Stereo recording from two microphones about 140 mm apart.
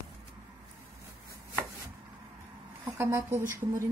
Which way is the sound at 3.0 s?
15° right (ahead or behind).